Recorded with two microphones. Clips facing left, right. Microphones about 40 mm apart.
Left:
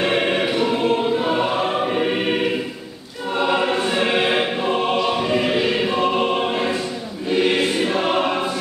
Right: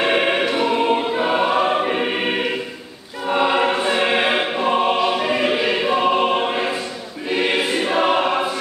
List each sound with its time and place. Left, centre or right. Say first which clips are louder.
0.0 s choir: right 1 dB; centre